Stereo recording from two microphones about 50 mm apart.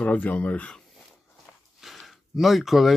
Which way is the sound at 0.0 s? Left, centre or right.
Left.